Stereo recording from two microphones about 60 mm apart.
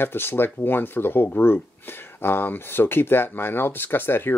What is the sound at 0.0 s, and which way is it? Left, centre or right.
Speech, left.